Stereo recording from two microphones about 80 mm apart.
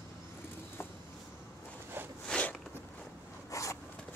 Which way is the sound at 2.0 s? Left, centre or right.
Right.